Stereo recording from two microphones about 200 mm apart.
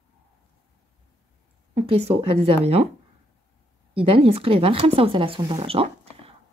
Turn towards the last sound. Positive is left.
turn(degrees=-30)  # may be behind; listen again after turning